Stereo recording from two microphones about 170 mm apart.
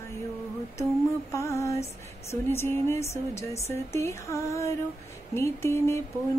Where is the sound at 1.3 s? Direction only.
15° left (ahead or behind).